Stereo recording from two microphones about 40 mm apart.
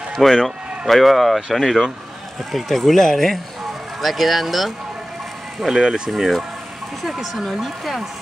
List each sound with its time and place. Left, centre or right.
0.1 s speech: centre
4.0 s speech: centre
5.7 s speech: centre
6.0 s speech: centre